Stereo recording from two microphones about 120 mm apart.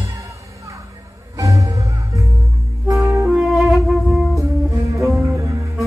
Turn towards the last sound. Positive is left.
turn(degrees=-25)  # may be behind; listen again after turning